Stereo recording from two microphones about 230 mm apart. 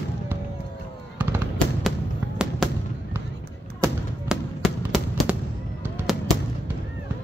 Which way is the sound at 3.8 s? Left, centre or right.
Centre.